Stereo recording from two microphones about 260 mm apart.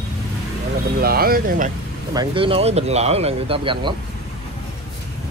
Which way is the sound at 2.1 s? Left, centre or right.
Centre.